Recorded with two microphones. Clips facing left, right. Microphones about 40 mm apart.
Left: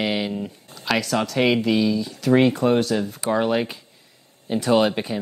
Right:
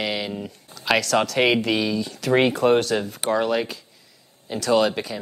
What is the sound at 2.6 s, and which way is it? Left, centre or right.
Speech, right.